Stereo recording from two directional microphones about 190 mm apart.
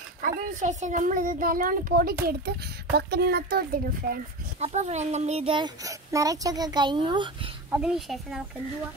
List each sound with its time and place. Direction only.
0.2 s a child's voice: 45° right (ahead or behind)
4.6 s a child's voice: 35° right (ahead or behind)
7.7 s speech: 5° right (ahead or behind)